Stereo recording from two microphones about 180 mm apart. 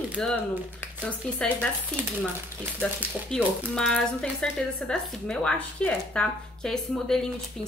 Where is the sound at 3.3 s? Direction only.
5° left (ahead or behind).